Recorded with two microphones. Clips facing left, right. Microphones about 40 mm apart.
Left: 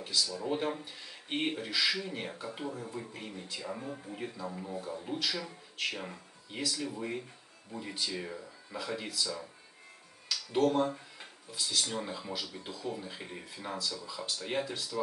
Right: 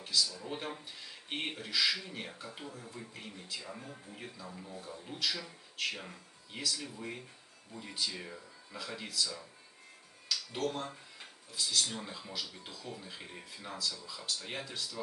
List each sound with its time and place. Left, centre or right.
0.0 s a sound: centre
0.4 s speech: centre
4.5 s speech: left
4.7 s speech: centre